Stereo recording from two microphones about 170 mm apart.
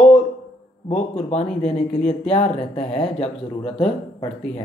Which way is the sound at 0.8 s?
40° left (ahead or behind).